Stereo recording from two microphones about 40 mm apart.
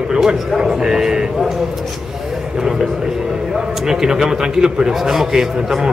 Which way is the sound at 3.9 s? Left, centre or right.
Centre.